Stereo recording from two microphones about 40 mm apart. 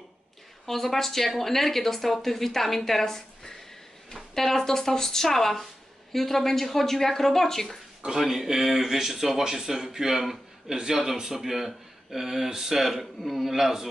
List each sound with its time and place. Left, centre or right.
0.7 s a woman's voice: centre
8.2 s a man's voice: centre